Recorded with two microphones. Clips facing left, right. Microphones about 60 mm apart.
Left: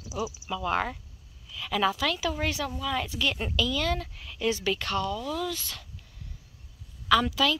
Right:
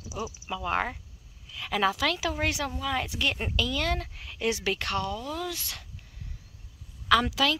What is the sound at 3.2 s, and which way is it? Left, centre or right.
A woman's voice, right.